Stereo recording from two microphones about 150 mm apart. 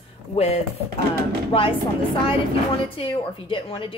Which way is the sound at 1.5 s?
40° left (ahead or behind).